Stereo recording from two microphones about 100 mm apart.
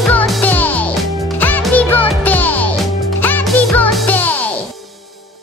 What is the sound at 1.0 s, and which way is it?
Music, centre (ahead or behind).